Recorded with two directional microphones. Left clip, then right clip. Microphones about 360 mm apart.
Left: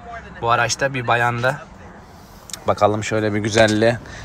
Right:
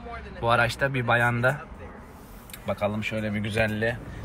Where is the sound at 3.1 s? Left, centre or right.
Left.